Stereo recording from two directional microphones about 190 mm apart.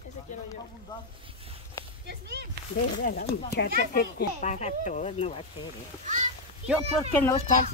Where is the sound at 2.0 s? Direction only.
60° right (ahead or behind).